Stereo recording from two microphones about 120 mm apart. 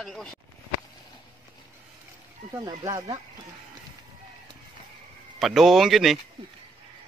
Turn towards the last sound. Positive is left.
turn(degrees=0)  # may be behind; listen again after turning